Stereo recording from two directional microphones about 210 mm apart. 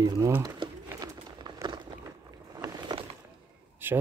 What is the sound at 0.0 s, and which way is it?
Crumpling, 15° right (ahead or behind).